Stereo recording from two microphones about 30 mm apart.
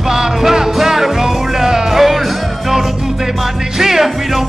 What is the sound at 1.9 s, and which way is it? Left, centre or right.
Music, centre.